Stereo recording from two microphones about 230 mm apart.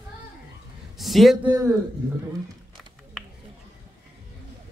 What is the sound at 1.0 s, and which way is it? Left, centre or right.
Speech, centre.